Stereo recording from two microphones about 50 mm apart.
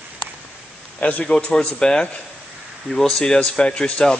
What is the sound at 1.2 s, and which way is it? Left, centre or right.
Speech, centre.